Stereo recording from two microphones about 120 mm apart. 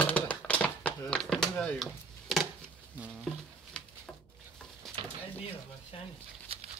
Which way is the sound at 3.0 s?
10° right (ahead or behind).